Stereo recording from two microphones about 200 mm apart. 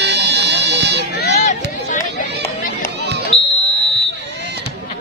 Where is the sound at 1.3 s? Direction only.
35° left (ahead or behind).